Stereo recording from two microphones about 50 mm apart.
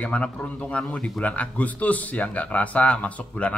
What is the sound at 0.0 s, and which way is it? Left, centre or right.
Speech, left.